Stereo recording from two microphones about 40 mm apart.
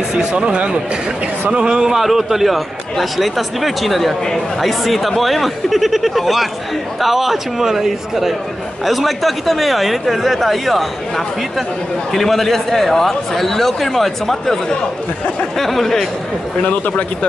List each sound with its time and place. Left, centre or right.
0.1 s speech: right
2.0 s speech: centre